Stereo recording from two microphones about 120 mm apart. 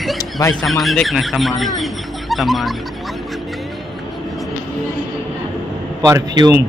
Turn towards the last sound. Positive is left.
turn(degrees=-30)  # may be behind; listen again after turning